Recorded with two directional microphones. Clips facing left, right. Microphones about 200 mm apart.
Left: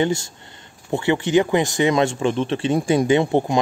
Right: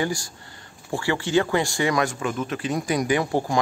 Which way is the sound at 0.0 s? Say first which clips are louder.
Left 6 dB; 25° left (ahead or behind).